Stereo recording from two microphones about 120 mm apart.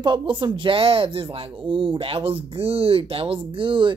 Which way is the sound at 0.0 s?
45° right (ahead or behind).